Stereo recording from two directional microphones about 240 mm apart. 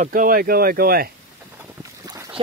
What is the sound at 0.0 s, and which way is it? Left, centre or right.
Speech, right.